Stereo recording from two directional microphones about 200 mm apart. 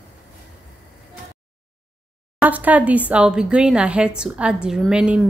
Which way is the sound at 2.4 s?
10° right (ahead or behind).